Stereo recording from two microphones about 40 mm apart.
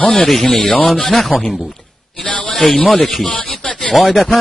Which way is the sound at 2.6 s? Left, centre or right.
Left.